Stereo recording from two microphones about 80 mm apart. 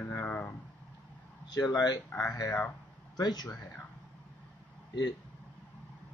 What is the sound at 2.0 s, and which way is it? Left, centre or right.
Speech, left.